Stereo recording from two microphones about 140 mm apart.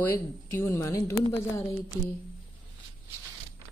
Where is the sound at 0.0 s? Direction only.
15° left (ahead or behind).